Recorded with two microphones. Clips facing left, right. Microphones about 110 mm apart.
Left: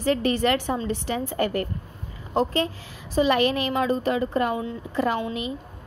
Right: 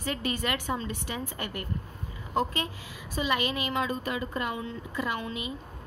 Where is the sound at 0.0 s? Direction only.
35° left (ahead or behind).